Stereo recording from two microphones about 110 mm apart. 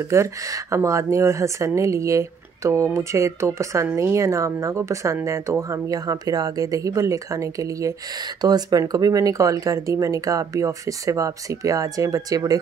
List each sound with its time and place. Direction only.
0.1 s speech: 25° right (ahead or behind)